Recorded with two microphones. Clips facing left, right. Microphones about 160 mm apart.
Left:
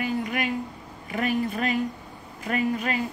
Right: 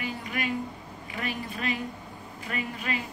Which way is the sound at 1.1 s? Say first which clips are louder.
Left 9 dB; 45° left (ahead or behind).